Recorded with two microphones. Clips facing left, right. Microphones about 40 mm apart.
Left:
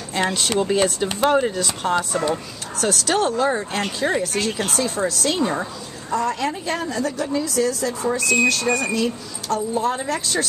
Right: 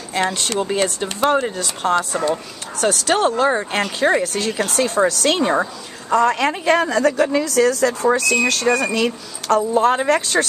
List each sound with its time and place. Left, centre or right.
0.1 s speech: centre
2.8 s speech: right
3.8 s a woman's voice: right